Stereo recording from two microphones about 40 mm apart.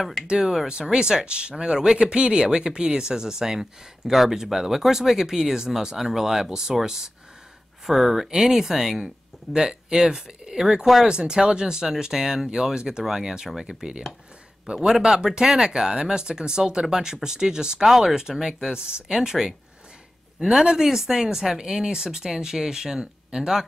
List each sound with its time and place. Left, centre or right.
0.9 s speech: right
9.5 s speech: right
20.5 s speech: centre